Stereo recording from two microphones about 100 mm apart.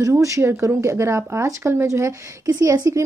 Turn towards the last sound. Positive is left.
turn(degrees=-35)  # may be behind; listen again after turning